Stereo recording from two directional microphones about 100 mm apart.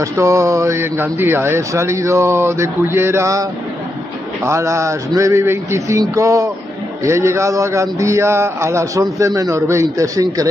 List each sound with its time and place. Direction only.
0.0 s speech: 30° right (ahead or behind)
4.5 s a man's voice: 30° right (ahead or behind)